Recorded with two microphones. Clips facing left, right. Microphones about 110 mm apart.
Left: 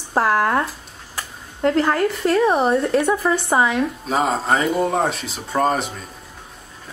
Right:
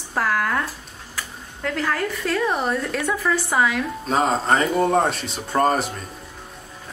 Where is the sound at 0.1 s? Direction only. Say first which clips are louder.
Left 5 dB; 30° left (ahead or behind).